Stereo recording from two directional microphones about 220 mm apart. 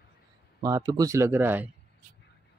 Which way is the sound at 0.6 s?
15° right (ahead or behind).